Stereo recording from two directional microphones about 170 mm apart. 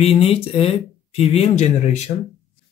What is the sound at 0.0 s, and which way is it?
Speech, 35° left (ahead or behind).